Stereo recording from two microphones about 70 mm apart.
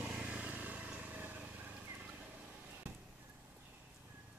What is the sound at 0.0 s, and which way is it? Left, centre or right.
Vehicle, centre.